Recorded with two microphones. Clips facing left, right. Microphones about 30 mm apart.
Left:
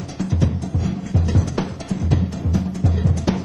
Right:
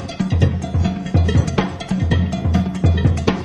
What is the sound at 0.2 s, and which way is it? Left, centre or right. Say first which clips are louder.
Music: right 2 dB; right.